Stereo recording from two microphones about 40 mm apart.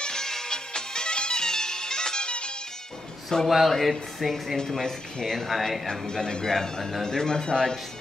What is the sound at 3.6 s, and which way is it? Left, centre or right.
A man's voice, centre.